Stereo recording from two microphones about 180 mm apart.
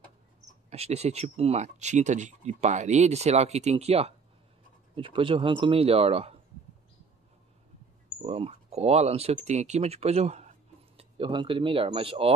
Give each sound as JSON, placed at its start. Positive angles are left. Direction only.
{"t": 0.7, "sound": "speech", "side_deg": -35}
{"t": 8.2, "sound": "speech", "side_deg": -35}